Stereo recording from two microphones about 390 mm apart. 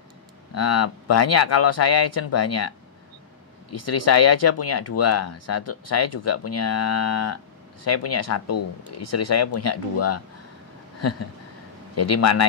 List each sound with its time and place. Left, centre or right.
0.6 s speech: left
3.7 s speech: left
11.0 s a sound: left
11.9 s speech: left